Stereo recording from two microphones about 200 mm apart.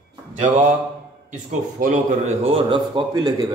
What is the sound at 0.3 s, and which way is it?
Mantra, 35° right (ahead or behind).